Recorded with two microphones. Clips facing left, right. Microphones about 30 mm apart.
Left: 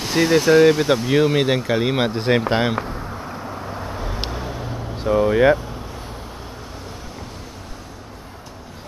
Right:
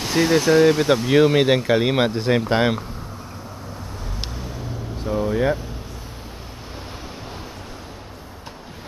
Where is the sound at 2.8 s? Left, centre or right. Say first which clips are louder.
Left 7 dB; left.